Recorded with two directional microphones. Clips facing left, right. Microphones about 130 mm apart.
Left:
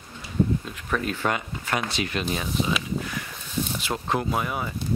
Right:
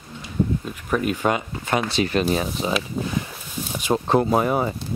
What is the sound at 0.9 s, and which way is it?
Speech, 15° right (ahead or behind).